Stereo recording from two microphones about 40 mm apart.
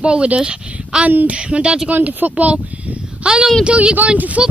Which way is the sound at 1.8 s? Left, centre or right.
Right.